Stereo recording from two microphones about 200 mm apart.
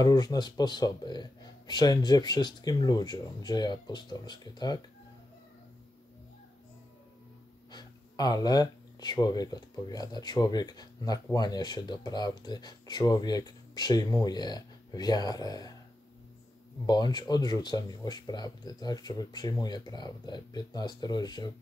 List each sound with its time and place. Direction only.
0.0 s speech: 20° left (ahead or behind)
7.7 s speech: 20° left (ahead or behind)
16.8 s speech: 20° left (ahead or behind)